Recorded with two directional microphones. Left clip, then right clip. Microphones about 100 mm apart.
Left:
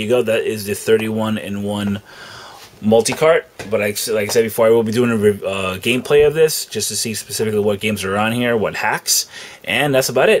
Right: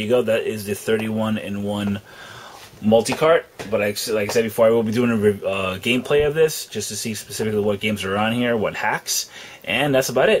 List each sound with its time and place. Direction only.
0.0 s speech: 30° left (ahead or behind)